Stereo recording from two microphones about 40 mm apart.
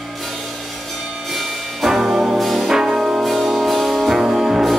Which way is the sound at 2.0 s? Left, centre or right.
Centre.